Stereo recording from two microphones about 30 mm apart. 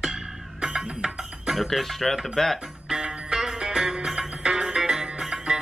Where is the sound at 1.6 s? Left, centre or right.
Centre.